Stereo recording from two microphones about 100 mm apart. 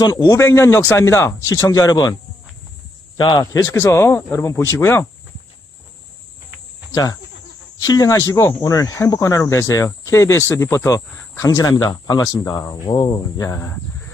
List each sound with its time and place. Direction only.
0.0 s speech: 40° left (ahead or behind)
3.2 s a man's voice: 55° left (ahead or behind)
3.5 s speech: 30° left (ahead or behind)
6.9 s speech: 40° left (ahead or behind)
11.7 s speech: 50° left (ahead or behind)
13.5 s speech: 30° left (ahead or behind)